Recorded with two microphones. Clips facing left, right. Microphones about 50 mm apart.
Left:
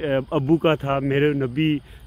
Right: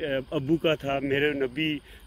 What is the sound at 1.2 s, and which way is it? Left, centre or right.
Speech, centre.